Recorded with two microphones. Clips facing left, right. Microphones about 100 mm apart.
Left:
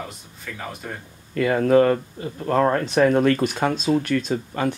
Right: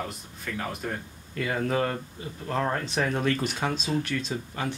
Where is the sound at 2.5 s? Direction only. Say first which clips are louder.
Left 9 dB; 70° left (ahead or behind).